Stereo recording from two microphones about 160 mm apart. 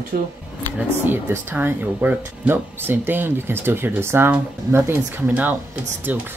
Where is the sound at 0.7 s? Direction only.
15° right (ahead or behind).